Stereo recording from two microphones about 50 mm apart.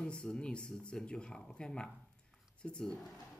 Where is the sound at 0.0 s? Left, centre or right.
Centre.